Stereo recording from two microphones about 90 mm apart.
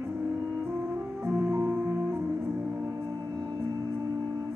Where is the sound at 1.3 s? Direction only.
25° right (ahead or behind).